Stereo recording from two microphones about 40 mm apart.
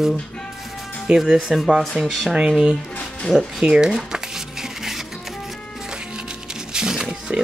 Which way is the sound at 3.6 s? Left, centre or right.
Centre.